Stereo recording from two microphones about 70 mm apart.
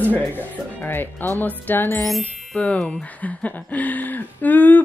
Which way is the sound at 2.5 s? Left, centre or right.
Centre.